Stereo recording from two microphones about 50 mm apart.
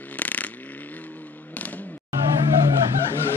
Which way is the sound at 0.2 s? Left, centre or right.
Left.